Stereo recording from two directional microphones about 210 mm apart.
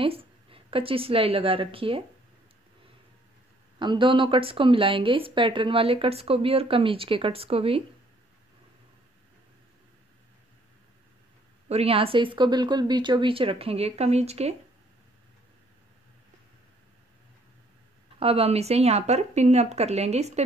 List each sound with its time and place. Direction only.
0.0 s a woman's voice: 25° right (ahead or behind)
3.8 s speech: 20° right (ahead or behind)
11.7 s speech: 30° right (ahead or behind)
18.2 s speech: 30° right (ahead or behind)